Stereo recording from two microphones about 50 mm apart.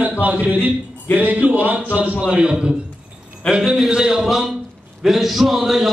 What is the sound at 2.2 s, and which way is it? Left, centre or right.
Speech, centre.